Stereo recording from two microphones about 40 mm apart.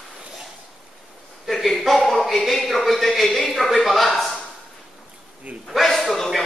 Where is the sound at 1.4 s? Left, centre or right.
Centre.